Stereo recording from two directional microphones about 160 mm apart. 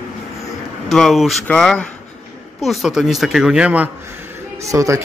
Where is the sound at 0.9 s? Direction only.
Centre (ahead or behind).